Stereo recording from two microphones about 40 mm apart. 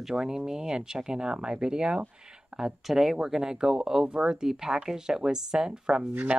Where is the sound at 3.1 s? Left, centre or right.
Centre.